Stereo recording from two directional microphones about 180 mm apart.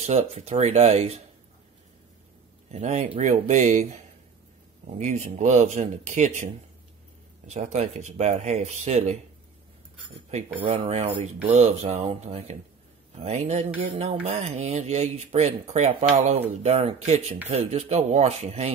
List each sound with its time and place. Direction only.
0.0 s speech: 40° right (ahead or behind)
2.7 s speech: 40° right (ahead or behind)
10.3 s speech: 30° right (ahead or behind)